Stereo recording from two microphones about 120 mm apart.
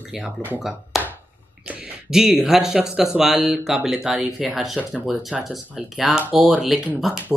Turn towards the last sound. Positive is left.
turn(degrees=0)  # may be behind; listen again after turning